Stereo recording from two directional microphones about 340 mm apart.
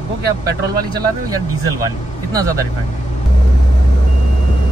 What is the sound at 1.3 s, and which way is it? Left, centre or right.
Speech, centre.